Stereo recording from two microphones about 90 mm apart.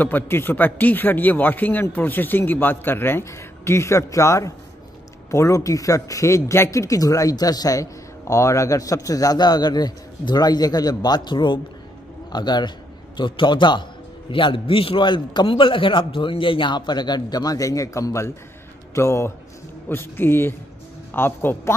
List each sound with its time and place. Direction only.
0.0 s a man's voice: 25° left (ahead or behind); by 12.7 s 50° left (ahead or behind)
13.2 s a man's voice: 65° left (ahead or behind)
14.3 s a man's voice: 70° left (ahead or behind); by 21.7 s 25° left (ahead or behind)